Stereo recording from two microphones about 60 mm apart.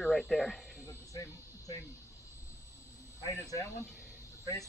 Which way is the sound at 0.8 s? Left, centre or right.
Left.